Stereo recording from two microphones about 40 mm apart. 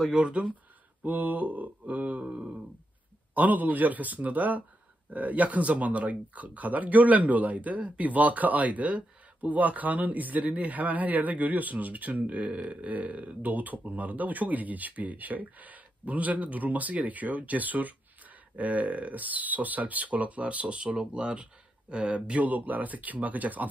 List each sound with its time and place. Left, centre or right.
0.1 s speech: right
1.0 s speech: right
3.3 s speech: right
22.5 s speech: right